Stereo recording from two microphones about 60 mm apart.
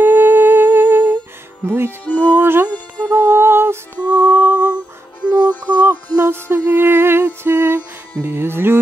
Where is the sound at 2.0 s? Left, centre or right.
Left.